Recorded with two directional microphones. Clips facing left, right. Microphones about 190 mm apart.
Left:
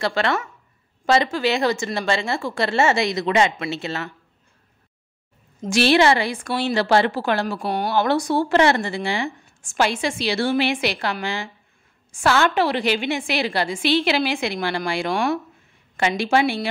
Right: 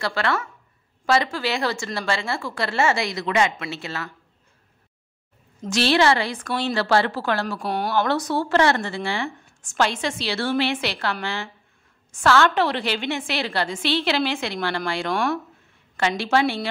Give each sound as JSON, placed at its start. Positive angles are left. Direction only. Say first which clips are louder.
{"t": 0.0, "sound": "a woman's voice", "louder": "left 3 dB", "side_deg": 20}
{"t": 5.7, "sound": "speech", "louder": "left 3 dB", "side_deg": 15}
{"t": 7.6, "sound": "speech", "louder": "left 2 dB", "side_deg": 0}
{"t": 7.9, "sound": "speech", "louder": "left 3 dB", "side_deg": 15}